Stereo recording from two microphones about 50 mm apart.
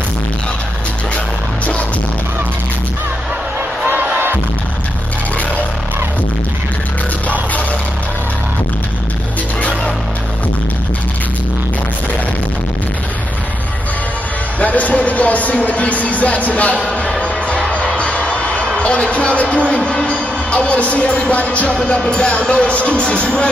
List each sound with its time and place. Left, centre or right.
3.8 s music: right
14.6 s a sound: left
16.8 s basketball bounce: left
17.2 s music: left
18.8 s speech: left
19.5 s music: left
21.7 s speech: centre